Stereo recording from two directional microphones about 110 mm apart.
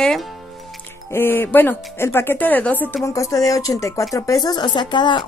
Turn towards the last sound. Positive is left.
turn(degrees=45)  # may be behind; listen again after turning